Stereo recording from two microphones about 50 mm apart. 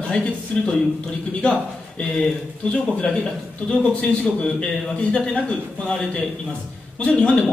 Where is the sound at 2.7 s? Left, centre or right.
Centre.